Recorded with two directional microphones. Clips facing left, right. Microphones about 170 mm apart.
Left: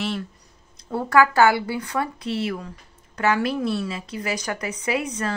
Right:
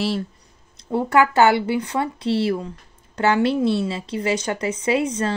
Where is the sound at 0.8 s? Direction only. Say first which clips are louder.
Right 1 dB; 20° right (ahead or behind).